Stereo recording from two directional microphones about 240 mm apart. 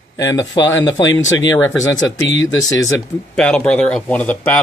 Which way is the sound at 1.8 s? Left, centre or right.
Left.